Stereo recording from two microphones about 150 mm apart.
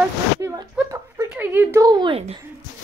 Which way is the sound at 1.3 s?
15° right (ahead or behind).